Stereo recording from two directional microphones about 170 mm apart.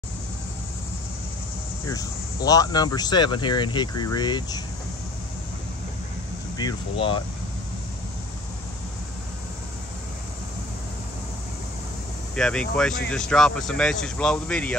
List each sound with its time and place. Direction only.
1.9 s speech: 20° left (ahead or behind)
6.6 s speech: 30° left (ahead or behind)
12.4 s speech: 5° left (ahead or behind)